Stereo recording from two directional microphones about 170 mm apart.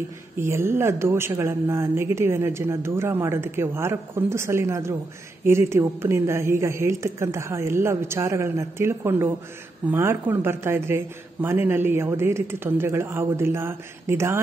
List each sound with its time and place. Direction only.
0.4 s speech: 15° right (ahead or behind)